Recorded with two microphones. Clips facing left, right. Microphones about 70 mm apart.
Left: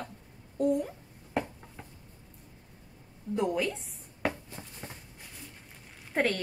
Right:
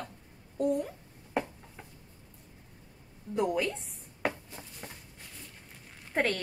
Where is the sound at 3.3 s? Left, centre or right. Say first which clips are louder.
Even; centre.